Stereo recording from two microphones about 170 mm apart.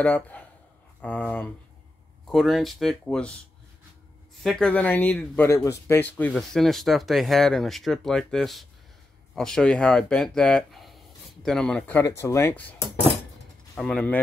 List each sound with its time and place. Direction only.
0.0 s speech: 10° left (ahead or behind)
4.4 s speech: 5° left (ahead or behind)
12.0 s speech: 20° left (ahead or behind)